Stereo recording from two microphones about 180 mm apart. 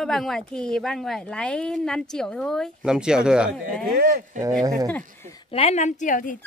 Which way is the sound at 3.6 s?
55° right (ahead or behind).